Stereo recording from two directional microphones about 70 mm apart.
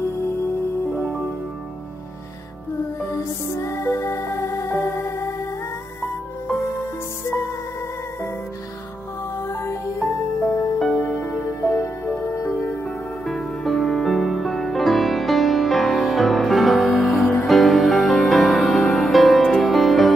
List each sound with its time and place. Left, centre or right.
1.0 s music: centre
3.1 s music: left
9.5 s music: left
9.9 s music: centre
13.2 s music: centre